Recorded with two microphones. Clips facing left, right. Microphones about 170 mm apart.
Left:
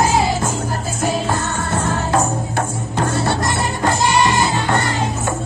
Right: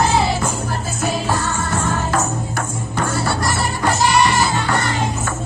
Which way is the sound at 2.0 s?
30° left (ahead or behind).